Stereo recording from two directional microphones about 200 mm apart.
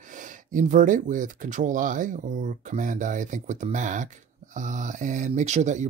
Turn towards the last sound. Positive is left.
turn(degrees=-35)  # may be behind; listen again after turning